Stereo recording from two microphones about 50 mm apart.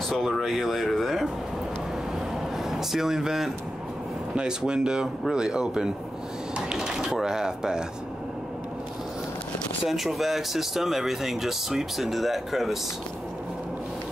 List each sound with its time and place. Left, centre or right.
0.1 s speech: centre
2.7 s speech: centre
6.7 s a sound: centre
7.1 s speech: centre
9.8 s speech: centre